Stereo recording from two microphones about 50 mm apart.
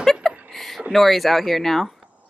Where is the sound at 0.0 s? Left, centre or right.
Centre.